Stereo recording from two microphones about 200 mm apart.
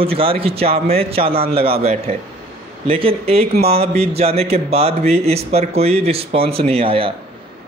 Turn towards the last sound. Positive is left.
turn(degrees=-30)  # may be behind; listen again after turning